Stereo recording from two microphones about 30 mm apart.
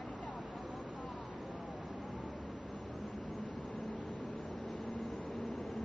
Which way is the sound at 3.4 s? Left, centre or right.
Left.